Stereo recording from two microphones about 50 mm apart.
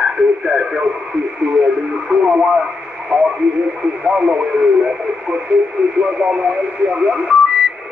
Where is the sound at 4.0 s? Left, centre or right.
Centre.